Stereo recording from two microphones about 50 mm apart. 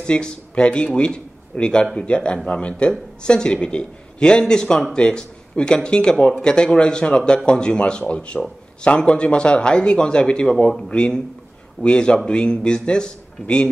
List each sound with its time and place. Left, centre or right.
0.0 s speech: centre